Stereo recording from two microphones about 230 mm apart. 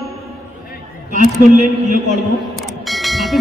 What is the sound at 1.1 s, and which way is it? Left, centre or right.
A man's voice, right.